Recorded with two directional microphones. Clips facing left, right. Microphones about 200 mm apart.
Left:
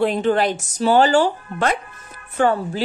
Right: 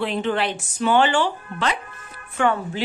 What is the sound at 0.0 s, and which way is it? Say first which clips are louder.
A woman's voice: left 5 dB; 40° left (ahead or behind).